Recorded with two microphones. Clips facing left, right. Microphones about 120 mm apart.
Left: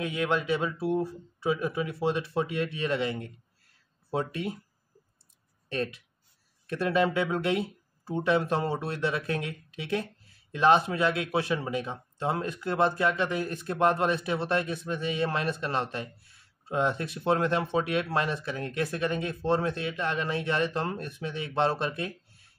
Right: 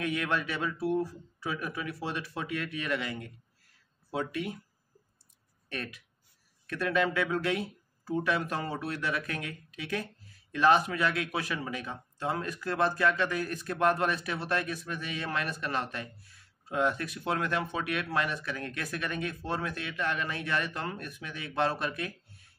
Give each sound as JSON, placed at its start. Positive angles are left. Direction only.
{"t": 0.0, "sound": "speech", "side_deg": 25}
{"t": 5.7, "sound": "speech", "side_deg": 25}